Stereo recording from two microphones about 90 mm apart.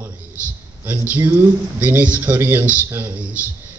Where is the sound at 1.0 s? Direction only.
20° right (ahead or behind).